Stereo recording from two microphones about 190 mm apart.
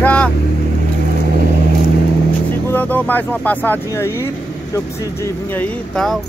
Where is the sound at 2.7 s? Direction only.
10° left (ahead or behind).